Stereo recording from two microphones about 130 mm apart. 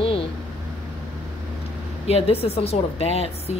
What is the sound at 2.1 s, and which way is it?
A woman's voice, 50° left (ahead or behind).